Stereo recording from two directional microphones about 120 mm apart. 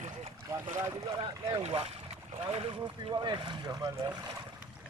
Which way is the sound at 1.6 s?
55° right (ahead or behind).